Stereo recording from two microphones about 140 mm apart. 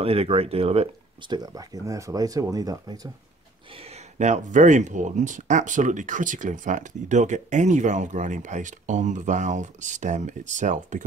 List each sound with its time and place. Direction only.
0.0 s speech: 45° right (ahead or behind)
1.3 s speech: 25° right (ahead or behind)
4.2 s speech: 60° right (ahead or behind)